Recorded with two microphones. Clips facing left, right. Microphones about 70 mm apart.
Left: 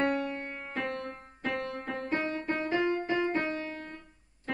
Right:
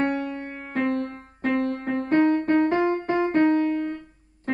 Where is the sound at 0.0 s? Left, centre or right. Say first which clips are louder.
Right 4 dB; right.